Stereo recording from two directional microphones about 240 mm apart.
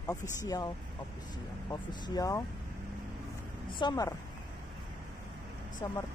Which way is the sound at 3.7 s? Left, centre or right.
Centre.